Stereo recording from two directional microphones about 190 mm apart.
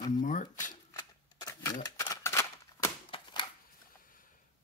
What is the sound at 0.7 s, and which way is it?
Shuffling cards, 20° left (ahead or behind).